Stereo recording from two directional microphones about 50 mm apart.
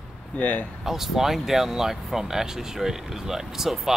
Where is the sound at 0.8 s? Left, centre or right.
Centre.